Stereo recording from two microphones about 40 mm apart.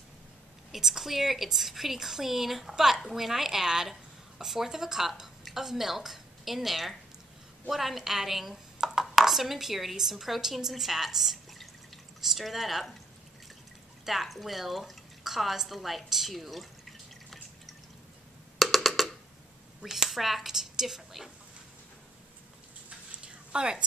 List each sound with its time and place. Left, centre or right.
0.7 s a woman's voice: centre
14.0 s speech: centre
18.6 s music: centre
19.8 s speech: centre
23.2 s a sound: right